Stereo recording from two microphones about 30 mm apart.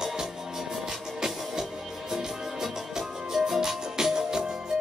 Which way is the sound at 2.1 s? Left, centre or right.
Centre.